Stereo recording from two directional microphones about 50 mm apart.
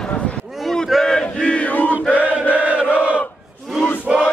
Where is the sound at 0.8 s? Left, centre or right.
Centre.